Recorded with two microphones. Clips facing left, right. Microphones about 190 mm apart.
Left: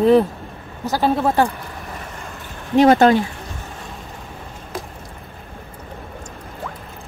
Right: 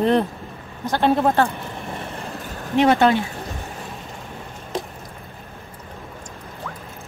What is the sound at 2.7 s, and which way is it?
Speech, 40° left (ahead or behind).